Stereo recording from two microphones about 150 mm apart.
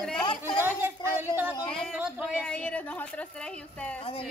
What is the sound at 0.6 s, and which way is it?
Speech, 15° right (ahead or behind).